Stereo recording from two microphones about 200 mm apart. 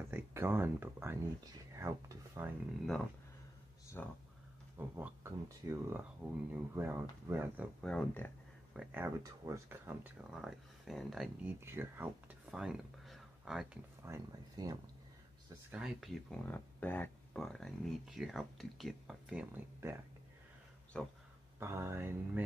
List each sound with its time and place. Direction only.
0.1 s speech: 10° right (ahead or behind)
4.0 s speech: 10° left (ahead or behind)
4.7 s speech: 10° right (ahead or behind)
7.8 s speech: 5° left (ahead or behind)
8.7 s speech: 10° right (ahead or behind)
11.6 s speech: 10° right (ahead or behind)
14.0 s speech: 15° right (ahead or behind)
15.7 s speech: centre (ahead or behind)
20.9 s speech: 5° left (ahead or behind)
21.5 s speech: 15° right (ahead or behind)